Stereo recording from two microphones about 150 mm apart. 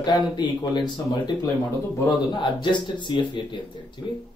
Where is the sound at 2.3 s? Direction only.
30° left (ahead or behind).